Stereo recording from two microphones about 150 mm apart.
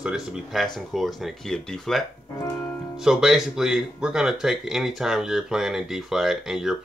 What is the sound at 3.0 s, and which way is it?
Speech, 5° right (ahead or behind).